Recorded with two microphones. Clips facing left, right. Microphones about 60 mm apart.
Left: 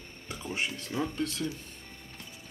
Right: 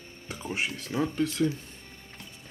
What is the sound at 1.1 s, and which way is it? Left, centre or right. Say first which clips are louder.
Speech: right 6 dB; centre.